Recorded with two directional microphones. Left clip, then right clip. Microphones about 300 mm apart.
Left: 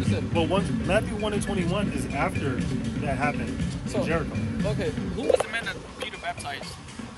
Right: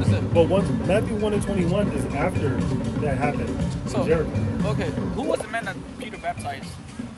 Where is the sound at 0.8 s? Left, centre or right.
Centre.